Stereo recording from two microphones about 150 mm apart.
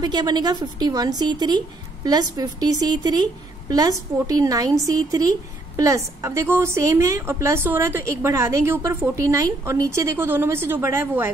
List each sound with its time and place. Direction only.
0.0 s a woman's voice: 30° right (ahead or behind)